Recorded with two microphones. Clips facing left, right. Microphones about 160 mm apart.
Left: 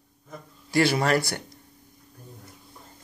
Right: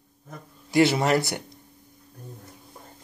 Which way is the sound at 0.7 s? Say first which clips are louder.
Right 2 dB; 20° right (ahead or behind).